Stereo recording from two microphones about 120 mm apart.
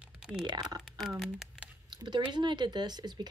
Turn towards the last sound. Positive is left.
turn(degrees=-35)  # may be behind; listen again after turning